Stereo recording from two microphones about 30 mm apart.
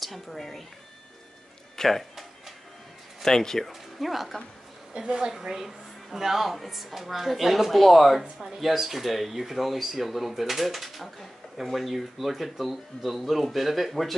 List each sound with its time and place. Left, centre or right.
0.0 s speech: centre
1.8 s speech: centre
3.2 s speech: centre
3.6 s speech: centre
4.9 s a woman's voice: right
5.4 s speech: centre